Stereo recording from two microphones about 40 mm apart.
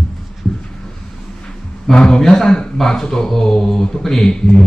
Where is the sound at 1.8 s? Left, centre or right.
Centre.